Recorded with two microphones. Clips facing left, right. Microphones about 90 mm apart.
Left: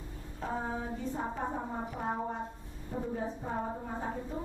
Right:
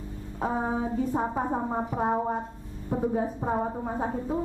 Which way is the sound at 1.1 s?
50° right (ahead or behind).